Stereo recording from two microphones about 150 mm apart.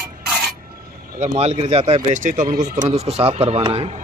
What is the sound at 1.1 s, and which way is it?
Speech, 50° right (ahead or behind).